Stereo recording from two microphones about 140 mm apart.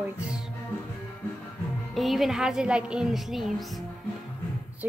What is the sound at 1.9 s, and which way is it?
Speech, centre (ahead or behind).